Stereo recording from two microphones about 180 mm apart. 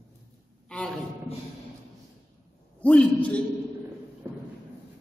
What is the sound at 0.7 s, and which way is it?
Speech, centre (ahead or behind).